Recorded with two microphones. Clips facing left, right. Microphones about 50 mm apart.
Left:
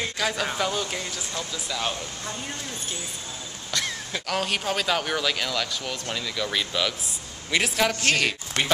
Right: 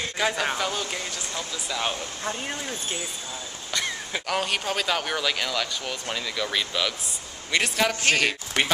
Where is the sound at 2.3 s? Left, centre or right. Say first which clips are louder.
Right 6 dB; right.